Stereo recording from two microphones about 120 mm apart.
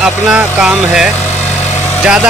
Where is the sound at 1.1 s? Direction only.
20° left (ahead or behind).